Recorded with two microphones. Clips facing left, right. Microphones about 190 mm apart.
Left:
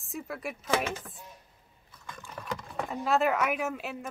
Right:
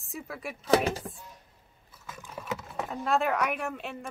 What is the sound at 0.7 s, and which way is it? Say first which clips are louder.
Speech: right 6 dB; 35° right (ahead or behind).